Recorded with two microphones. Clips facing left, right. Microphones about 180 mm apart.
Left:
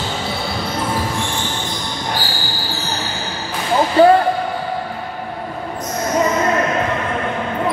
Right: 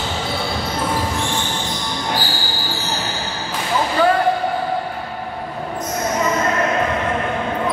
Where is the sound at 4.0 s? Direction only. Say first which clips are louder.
Left 6 dB; 35° left (ahead or behind).